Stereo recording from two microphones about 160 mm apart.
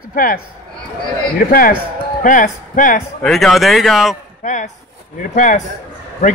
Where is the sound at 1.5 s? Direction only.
65° left (ahead or behind).